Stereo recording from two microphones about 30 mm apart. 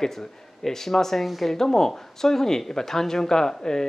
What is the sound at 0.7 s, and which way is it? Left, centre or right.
Speech, centre.